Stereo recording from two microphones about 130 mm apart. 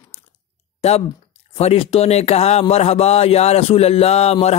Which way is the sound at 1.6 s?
50° left (ahead or behind).